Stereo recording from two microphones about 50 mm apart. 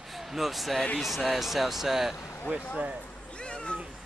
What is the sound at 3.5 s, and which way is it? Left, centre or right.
Cat, left.